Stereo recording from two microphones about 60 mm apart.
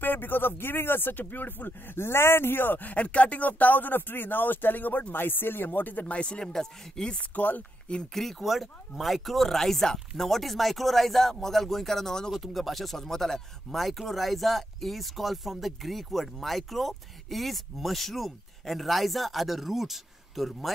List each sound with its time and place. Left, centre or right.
0.0 s speech: left; by 7.2 s centre
7.3 s speech: left
8.1 s speech: centre